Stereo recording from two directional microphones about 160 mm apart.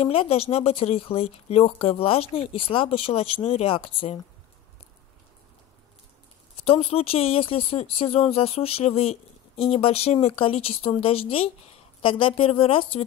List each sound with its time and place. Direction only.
0.0 s speech: 35° left (ahead or behind)
6.6 s speech: 35° left (ahead or behind)